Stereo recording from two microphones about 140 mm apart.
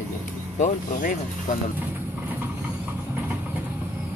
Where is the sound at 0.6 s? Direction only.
80° left.